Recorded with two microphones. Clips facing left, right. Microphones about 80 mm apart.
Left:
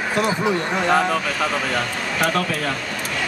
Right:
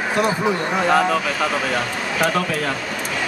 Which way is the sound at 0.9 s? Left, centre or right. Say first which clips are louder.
Right 1 dB; centre.